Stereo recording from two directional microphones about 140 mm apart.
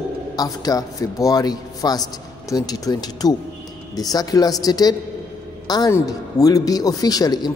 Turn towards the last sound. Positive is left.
turn(degrees=25)  # may be behind; listen again after turning